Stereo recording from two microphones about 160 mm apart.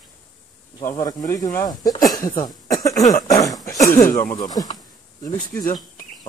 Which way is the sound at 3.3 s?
20° left (ahead or behind).